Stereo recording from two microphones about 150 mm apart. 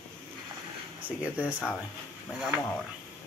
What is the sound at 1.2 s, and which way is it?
Speech, 10° right (ahead or behind).